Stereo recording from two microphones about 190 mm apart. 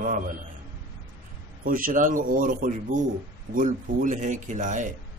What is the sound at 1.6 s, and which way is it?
Speech, 45° right (ahead or behind).